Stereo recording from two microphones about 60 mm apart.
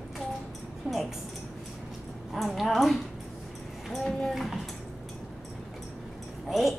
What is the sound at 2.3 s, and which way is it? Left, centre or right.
A woman's voice, centre.